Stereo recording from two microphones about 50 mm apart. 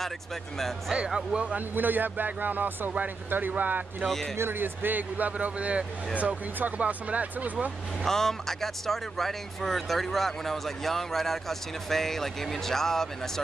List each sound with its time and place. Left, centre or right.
0.9 s speech: centre
1.8 s speech: right
4.4 s speech: right
8.0 s speech: centre